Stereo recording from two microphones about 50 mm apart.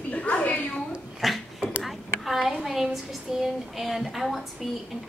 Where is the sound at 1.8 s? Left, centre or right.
Centre.